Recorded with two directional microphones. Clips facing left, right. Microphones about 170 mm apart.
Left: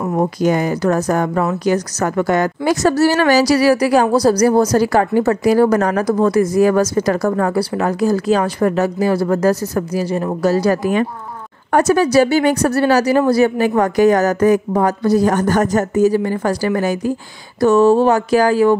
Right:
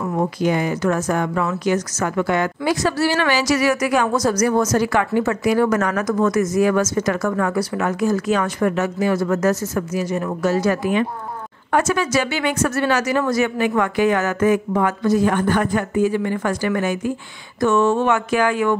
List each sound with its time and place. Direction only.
0.0 s a woman's voice: 35° left (ahead or behind)